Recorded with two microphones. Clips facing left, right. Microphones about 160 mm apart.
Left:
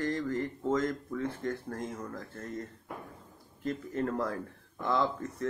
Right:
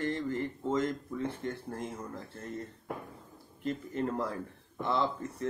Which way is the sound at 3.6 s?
20° right (ahead or behind).